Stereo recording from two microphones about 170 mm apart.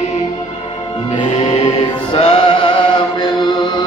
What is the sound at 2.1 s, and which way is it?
Music, 35° left (ahead or behind).